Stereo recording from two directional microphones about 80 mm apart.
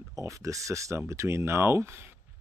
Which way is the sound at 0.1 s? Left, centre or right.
Right.